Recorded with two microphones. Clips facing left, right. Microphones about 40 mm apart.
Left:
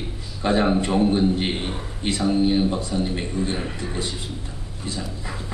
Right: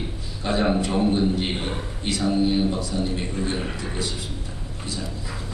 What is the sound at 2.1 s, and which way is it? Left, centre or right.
Speech, left.